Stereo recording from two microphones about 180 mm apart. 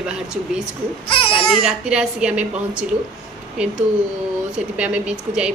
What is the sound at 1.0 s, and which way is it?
Speech, 30° left (ahead or behind).